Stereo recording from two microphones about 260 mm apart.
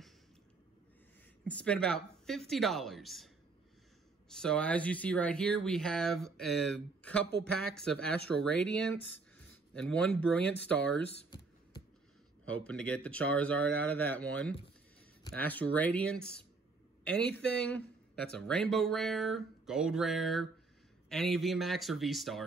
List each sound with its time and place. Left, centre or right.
1.5 s speech: centre
4.3 s speech: centre
9.8 s speech: centre
11.1 s a sound: centre
12.6 s a man's voice: centre